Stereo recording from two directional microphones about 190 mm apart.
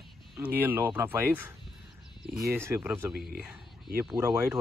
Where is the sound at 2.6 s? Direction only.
15° right (ahead or behind).